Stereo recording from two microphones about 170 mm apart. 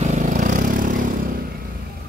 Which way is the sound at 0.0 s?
45° right (ahead or behind).